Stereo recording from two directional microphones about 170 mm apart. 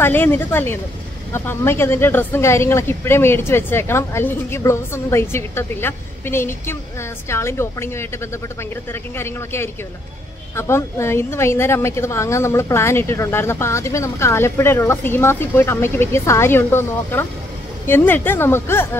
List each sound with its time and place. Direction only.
0.0 s speech: 10° left (ahead or behind)